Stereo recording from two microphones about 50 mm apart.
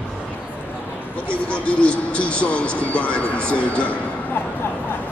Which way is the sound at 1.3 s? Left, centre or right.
Left.